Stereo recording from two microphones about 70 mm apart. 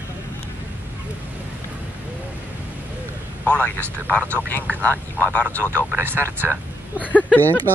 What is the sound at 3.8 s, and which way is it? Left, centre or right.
Speech, right.